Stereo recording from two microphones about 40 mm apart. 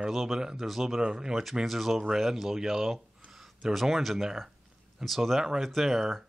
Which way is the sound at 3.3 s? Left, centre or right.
Centre.